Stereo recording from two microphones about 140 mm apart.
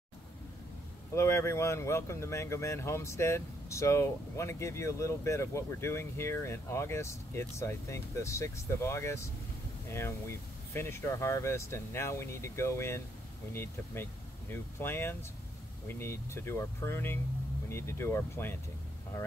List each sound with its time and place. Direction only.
1.1 s speech: 20° left (ahead or behind)